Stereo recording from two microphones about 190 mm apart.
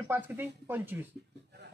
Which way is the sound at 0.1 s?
10° right (ahead or behind).